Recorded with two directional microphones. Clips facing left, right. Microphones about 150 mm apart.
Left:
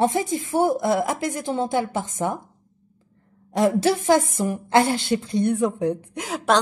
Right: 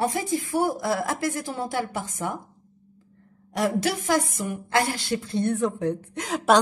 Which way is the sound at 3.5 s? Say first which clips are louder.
Left 5 dB; 25° left (ahead or behind).